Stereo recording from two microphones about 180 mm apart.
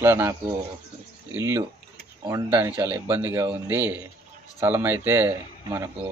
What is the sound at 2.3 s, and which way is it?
Speech, 20° right (ahead or behind).